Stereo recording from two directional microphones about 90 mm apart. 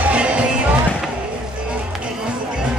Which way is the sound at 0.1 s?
10° right (ahead or behind).